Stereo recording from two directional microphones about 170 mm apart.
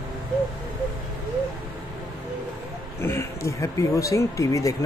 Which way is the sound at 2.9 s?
15° left (ahead or behind).